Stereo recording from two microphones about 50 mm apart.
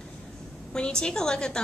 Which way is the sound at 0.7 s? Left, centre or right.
Centre.